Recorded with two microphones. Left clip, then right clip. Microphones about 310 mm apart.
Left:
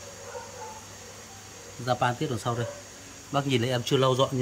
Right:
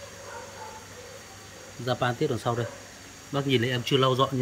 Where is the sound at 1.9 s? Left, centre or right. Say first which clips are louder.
Even; left.